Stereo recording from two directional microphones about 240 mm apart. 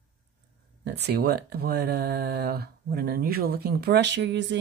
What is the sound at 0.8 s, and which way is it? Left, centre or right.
Speech, right.